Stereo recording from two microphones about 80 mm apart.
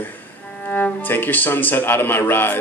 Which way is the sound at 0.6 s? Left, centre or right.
Centre.